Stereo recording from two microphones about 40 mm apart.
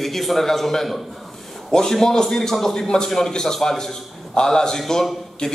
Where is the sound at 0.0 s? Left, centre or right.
Centre.